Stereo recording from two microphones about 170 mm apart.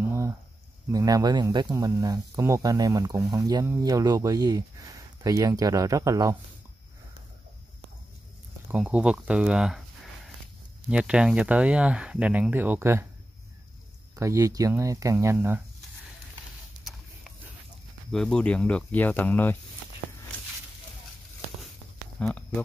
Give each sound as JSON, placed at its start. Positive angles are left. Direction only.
{"t": 0.0, "sound": "a sound", "side_deg": -15}
{"t": 0.9, "sound": "speech", "side_deg": -20}
{"t": 8.7, "sound": "speech", "side_deg": -5}
{"t": 10.9, "sound": "speech", "side_deg": -5}
{"t": 14.1, "sound": "speech", "side_deg": -20}
{"t": 18.1, "sound": "speech", "side_deg": 5}
{"t": 22.2, "sound": "speech", "side_deg": 5}